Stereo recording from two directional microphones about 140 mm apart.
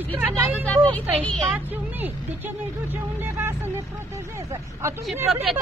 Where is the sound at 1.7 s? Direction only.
15° right (ahead or behind).